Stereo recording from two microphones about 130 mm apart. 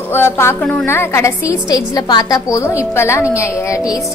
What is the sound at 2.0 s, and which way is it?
A woman's voice, 30° left (ahead or behind).